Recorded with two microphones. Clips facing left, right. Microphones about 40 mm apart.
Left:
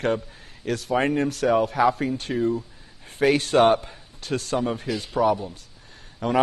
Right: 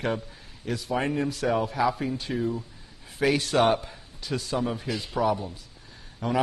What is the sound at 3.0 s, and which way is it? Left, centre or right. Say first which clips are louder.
A man's voice: left 4 dB; left.